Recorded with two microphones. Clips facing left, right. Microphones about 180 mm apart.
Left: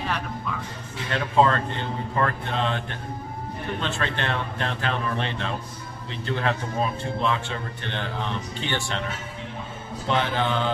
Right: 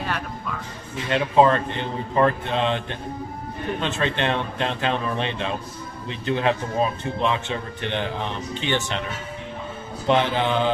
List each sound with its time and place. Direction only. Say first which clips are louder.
1.1 s a man's voice: right 3 dB; 20° right (ahead or behind)
10.0 s a man's voice: right 4 dB; 20° right (ahead or behind)